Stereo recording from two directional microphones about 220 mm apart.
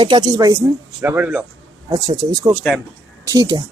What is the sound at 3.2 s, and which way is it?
Speech, 15° right (ahead or behind).